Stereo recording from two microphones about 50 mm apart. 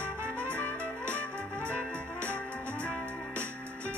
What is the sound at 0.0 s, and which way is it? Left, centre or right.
Trumpet, right.